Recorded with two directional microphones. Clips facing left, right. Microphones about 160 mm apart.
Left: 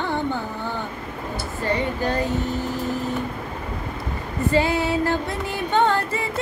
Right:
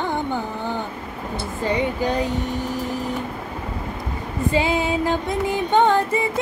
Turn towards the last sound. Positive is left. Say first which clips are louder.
# right 3 dB
turn(degrees=-15)  # may be behind; listen again after turning